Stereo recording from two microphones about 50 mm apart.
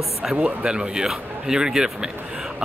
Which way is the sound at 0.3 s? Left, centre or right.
Centre.